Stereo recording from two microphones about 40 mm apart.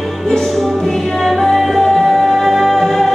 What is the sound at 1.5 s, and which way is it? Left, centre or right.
Music, centre.